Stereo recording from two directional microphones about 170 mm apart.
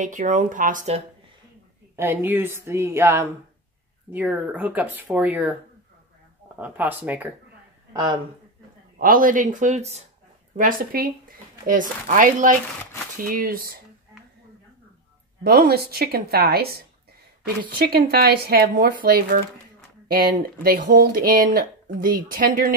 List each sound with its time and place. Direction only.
0.0 s speech: 50° right (ahead or behind)
2.0 s speech: 15° right (ahead or behind)
6.6 s speech: 10° right (ahead or behind)
7.9 s speech: 25° right (ahead or behind)
8.9 s speech: 55° right (ahead or behind)
10.5 s a woman's voice: 55° right (ahead or behind)
15.4 s a woman's voice: 65° right (ahead or behind)
20.6 s a woman's voice: 55° right (ahead or behind)